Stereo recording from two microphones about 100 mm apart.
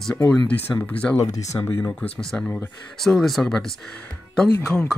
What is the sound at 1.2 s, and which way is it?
Speech, 35° left (ahead or behind).